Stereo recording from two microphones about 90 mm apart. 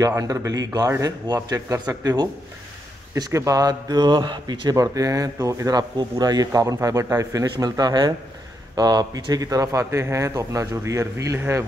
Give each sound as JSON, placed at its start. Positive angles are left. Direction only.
{"t": 0.0, "sound": "speech", "side_deg": -40}
{"t": 3.3, "sound": "speech", "side_deg": -40}
{"t": 7.5, "sound": "speech", "side_deg": -45}